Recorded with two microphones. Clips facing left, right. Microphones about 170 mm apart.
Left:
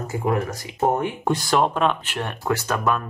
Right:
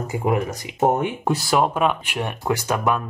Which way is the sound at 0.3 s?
15° right (ahead or behind).